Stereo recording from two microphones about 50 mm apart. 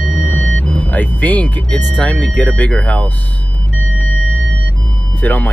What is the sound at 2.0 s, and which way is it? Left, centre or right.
Speech, left.